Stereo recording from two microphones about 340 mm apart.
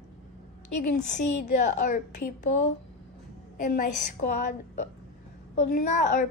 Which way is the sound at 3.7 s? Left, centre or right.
Left.